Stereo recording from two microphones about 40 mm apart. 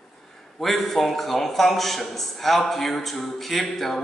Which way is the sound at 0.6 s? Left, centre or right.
Centre.